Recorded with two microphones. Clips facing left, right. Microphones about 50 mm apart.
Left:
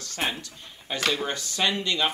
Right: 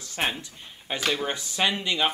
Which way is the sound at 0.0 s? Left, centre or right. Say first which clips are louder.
Right 1 dB; centre.